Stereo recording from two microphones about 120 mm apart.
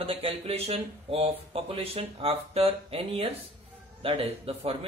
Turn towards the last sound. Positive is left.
turn(degrees=-55)  # may be behind; listen again after turning